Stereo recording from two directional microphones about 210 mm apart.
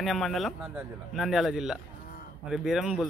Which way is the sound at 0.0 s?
Centre (ahead or behind).